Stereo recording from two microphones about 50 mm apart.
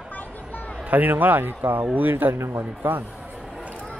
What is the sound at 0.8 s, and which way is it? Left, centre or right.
A man's voice, right.